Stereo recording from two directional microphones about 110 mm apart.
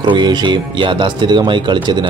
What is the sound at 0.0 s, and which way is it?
Speech, 45° right (ahead or behind).